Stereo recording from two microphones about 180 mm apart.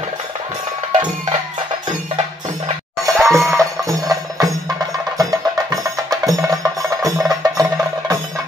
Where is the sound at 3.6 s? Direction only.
20° right (ahead or behind).